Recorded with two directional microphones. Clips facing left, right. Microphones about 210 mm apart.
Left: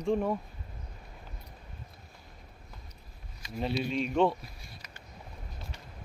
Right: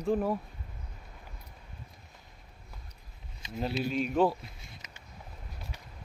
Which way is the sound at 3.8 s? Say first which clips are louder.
Even; centre (ahead or behind).